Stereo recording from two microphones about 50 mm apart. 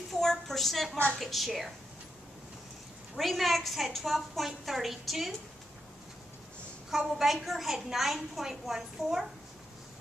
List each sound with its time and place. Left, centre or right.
0.1 s a sound: centre
1.2 s a woman's voice: centre
3.2 s a woman's voice: centre
6.9 s a woman's voice: centre